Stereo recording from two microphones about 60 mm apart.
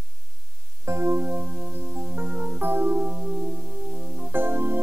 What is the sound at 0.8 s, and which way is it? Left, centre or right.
Music, right.